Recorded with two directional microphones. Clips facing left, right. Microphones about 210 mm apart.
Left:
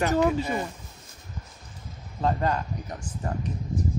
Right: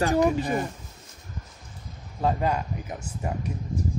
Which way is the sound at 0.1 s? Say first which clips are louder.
Right 1 dB; 15° right (ahead or behind).